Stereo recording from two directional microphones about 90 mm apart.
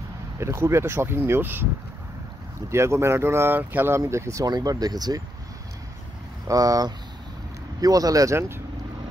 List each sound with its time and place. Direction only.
0.4 s speech: 30° right (ahead or behind)
2.7 s speech: 30° right (ahead or behind)
4.5 s speech: 45° right (ahead or behind)
6.4 s speech: 40° right (ahead or behind)